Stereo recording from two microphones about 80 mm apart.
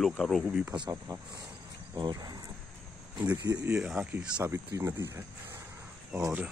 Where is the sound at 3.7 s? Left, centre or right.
Centre.